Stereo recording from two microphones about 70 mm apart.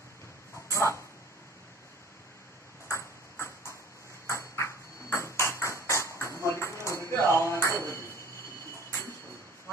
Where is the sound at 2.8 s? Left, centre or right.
Left.